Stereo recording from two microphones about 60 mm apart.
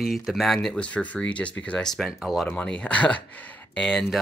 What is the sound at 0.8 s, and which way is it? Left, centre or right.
Speech, left.